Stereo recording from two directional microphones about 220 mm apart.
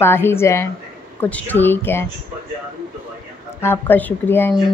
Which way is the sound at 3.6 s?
10° left (ahead or behind).